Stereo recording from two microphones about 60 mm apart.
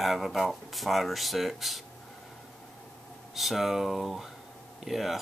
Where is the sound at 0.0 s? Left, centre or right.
Centre.